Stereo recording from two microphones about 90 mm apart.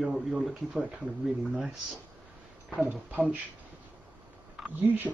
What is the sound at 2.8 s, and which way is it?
Speech, 20° right (ahead or behind).